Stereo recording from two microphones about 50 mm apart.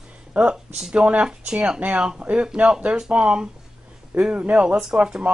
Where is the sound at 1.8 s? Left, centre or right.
Right.